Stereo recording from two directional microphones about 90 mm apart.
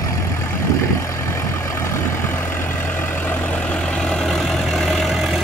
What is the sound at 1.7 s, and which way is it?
Vehicle, 30° left (ahead or behind).